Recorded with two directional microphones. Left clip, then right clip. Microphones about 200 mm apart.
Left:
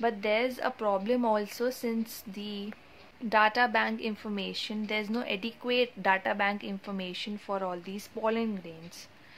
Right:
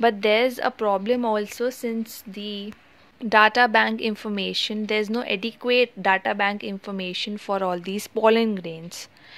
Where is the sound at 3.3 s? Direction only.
35° right (ahead or behind).